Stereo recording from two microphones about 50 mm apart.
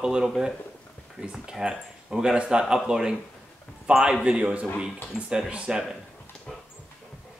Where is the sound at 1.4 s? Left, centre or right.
Centre.